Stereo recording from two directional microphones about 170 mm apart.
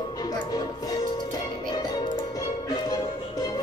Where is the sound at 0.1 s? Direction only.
25° left (ahead or behind).